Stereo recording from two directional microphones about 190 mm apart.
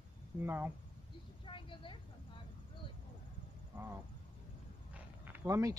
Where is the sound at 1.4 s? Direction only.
25° left (ahead or behind).